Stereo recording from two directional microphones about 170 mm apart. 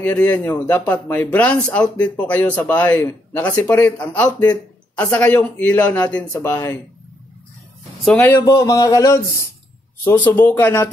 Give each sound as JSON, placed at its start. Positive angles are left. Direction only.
{"t": 0.0, "sound": "speech", "side_deg": 10}
{"t": 8.0, "sound": "speech", "side_deg": 10}